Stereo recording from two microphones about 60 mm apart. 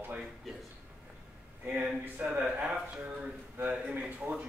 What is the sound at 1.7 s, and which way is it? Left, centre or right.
Speech, right.